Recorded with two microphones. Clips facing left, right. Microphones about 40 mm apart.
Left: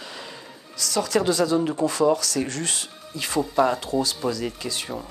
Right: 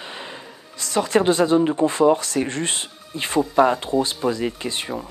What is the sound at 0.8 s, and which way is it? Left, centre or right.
Speech, right.